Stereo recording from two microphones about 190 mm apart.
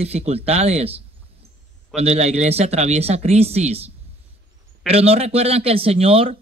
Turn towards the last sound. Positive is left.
turn(degrees=-30)  # may be behind; listen again after turning